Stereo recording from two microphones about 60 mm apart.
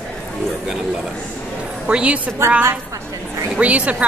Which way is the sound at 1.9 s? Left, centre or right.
Centre.